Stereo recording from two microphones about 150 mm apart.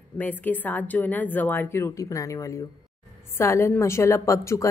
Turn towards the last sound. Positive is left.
turn(degrees=20)  # may be behind; listen again after turning